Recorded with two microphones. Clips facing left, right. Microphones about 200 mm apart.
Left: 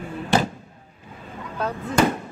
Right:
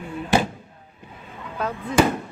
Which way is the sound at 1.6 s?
Centre (ahead or behind).